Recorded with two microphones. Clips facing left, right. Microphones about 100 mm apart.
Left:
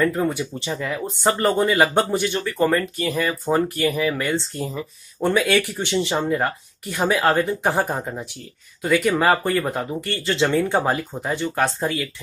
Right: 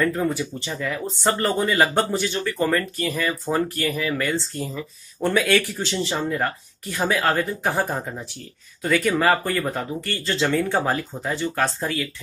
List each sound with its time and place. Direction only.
0.0 s speech: 20° left (ahead or behind)